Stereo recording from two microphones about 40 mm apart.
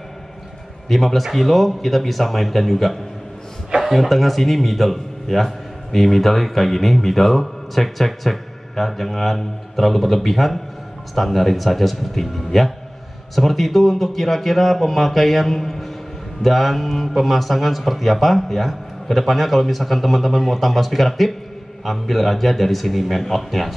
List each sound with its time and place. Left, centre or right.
0.8 s a man's voice: centre